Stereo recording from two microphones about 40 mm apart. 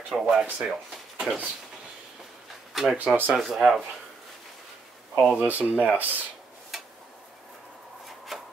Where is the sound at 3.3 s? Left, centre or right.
Centre.